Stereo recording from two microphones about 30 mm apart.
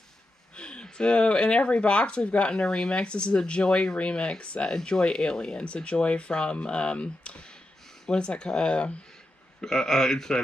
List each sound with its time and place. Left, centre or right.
0.6 s a sound: left
0.8 s speech: left
6.3 s speech: left
8.1 s speech: left
9.6 s speech: centre